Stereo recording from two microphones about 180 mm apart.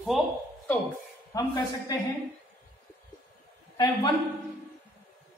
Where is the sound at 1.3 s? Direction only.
20° left (ahead or behind).